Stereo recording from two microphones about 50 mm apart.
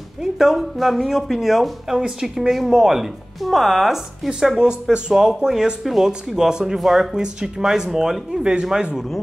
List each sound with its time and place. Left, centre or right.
0.2 s speech: centre
4.5 s speech: centre